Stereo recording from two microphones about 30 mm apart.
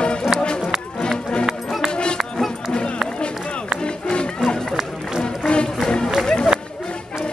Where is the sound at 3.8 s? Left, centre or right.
Left.